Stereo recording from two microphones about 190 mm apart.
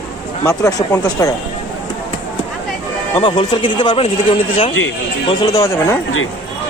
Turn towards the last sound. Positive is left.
turn(degrees=15)  # may be behind; listen again after turning